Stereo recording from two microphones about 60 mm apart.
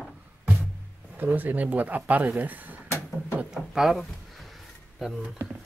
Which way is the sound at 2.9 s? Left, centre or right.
Left.